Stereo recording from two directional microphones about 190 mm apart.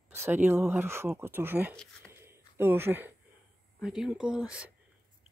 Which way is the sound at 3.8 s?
5° right (ahead or behind).